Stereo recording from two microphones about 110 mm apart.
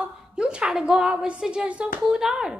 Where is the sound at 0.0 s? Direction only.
10° right (ahead or behind).